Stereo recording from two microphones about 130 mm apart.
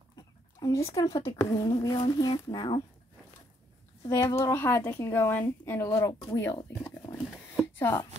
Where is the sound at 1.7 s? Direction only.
30° left (ahead or behind).